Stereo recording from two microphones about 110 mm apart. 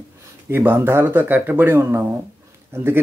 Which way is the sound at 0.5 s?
20° right (ahead or behind).